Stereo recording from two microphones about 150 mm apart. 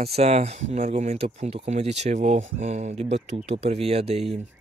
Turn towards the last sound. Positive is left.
turn(degrees=-45)  # may be behind; listen again after turning